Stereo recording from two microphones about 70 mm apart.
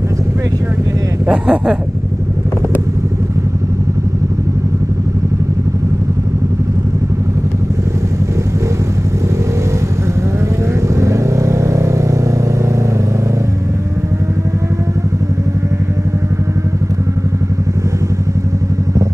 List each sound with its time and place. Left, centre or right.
1.2 s speech: centre
11.0 s vehicle: right